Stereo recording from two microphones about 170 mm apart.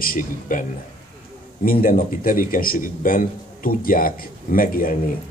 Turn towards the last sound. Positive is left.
turn(degrees=55)  # may be behind; listen again after turning